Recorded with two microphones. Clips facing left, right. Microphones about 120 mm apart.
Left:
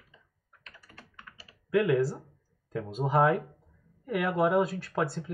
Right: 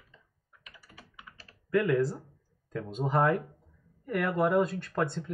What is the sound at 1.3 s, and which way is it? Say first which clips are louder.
Typing: left 1 dB; 5° left (ahead or behind).